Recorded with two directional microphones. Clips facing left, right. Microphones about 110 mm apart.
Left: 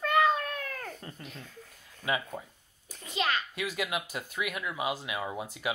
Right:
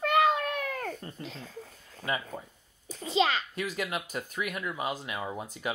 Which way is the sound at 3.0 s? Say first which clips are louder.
Right 4 dB; 30° right (ahead or behind).